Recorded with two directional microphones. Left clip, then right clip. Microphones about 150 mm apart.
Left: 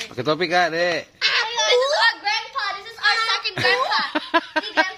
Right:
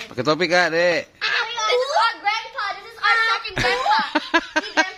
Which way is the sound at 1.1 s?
5° right (ahead or behind).